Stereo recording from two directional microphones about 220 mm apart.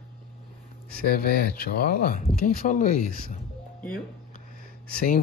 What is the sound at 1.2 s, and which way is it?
Speech, 45° left (ahead or behind).